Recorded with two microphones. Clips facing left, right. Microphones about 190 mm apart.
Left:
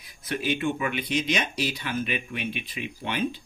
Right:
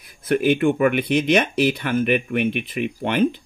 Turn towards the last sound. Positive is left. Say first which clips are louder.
# right 9 dB
turn(degrees=-55)  # may be behind; listen again after turning